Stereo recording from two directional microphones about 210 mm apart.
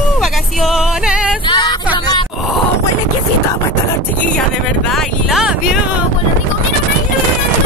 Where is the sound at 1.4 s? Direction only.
20° left (ahead or behind).